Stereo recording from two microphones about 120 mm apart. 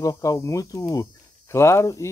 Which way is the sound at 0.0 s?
30° left (ahead or behind).